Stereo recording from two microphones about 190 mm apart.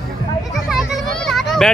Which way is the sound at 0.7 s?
Centre (ahead or behind).